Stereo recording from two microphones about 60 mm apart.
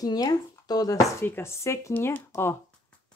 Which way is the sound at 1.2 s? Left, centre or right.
Left.